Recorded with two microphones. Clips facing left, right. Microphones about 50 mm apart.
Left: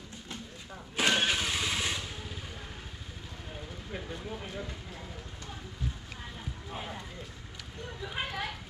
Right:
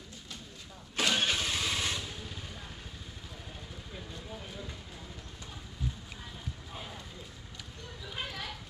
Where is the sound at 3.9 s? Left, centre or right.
Left.